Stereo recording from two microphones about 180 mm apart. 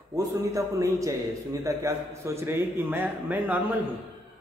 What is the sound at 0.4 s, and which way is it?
A man's voice, 20° right (ahead or behind).